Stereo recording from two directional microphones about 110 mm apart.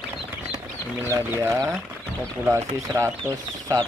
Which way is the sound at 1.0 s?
20° right (ahead or behind).